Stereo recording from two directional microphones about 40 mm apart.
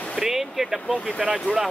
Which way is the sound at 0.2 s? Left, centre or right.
Centre.